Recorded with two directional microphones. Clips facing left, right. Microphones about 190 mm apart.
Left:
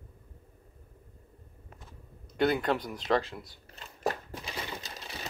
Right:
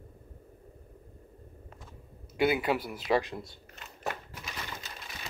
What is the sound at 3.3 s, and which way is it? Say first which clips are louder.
Speech: right 4 dB; 20° right (ahead or behind).